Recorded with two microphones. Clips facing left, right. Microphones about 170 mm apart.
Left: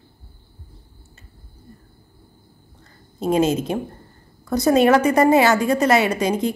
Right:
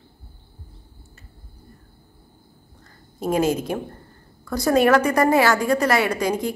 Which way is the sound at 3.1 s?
20° left (ahead or behind).